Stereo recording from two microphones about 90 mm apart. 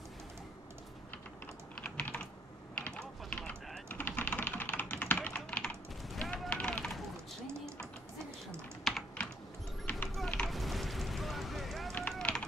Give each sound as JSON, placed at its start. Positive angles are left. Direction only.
{"t": 1.8, "sound": "typing", "side_deg": 10}
{"t": 6.1, "sound": "a sound", "side_deg": 5}
{"t": 8.8, "sound": "computer keyboard", "side_deg": 5}
{"t": 10.0, "sound": "vehicle", "side_deg": 5}
{"t": 10.5, "sound": "a sound", "side_deg": 0}
{"t": 12.1, "sound": "run", "side_deg": 10}